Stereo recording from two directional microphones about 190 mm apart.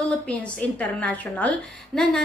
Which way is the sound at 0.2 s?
5° left (ahead or behind).